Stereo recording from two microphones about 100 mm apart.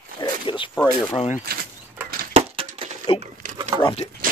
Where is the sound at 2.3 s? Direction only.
75° right (ahead or behind).